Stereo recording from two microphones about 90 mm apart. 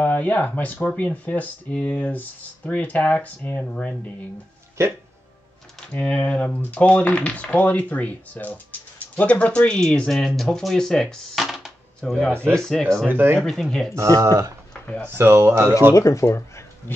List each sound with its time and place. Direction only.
0.0 s speech: 20° left (ahead or behind)
5.8 s speech: 15° left (ahead or behind)
13.0 s speech: 25° right (ahead or behind)
13.4 s speech: 5° left (ahead or behind)
13.9 s speech: 35° right (ahead or behind)
14.7 s a sound: 15° left (ahead or behind)
15.0 s speech: 25° right (ahead or behind)
15.9 s speech: 35° left (ahead or behind)